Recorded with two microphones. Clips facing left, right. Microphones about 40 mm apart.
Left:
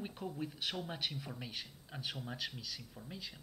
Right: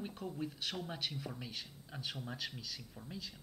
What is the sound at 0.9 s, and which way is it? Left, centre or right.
Speech, centre.